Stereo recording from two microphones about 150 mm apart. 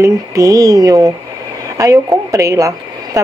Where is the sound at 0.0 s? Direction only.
20° right (ahead or behind).